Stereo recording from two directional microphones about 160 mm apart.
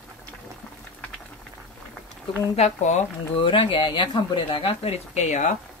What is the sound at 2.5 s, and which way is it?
Speech, 45° left (ahead or behind).